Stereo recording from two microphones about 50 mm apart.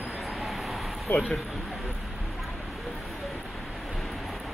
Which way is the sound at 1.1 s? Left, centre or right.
Left.